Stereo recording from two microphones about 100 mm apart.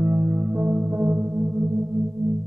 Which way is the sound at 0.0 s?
20° right (ahead or behind).